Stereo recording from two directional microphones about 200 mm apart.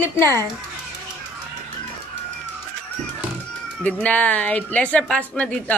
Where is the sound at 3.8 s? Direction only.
5° left (ahead or behind).